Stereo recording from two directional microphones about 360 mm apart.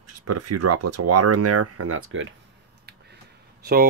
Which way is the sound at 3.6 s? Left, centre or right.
Right.